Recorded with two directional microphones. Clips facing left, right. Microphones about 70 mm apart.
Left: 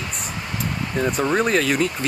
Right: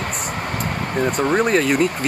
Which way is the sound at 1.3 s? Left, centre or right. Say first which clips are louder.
Right 3 dB; centre.